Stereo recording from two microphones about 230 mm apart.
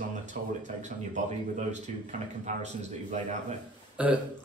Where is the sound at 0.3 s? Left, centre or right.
Right.